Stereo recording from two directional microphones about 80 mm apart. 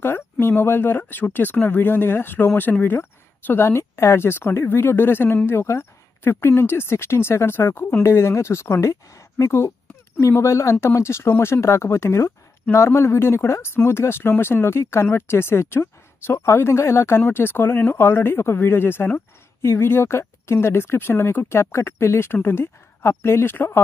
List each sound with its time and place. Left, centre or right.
0.0 s speech: left